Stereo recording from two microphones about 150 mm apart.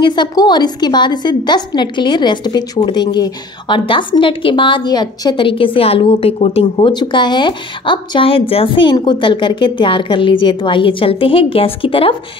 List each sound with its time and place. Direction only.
0.0 s a woman's voice: 30° left (ahead or behind)
6.9 s a woman's voice: 30° left (ahead or behind)